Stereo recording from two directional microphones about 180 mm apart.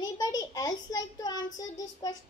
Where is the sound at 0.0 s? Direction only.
20° left (ahead or behind).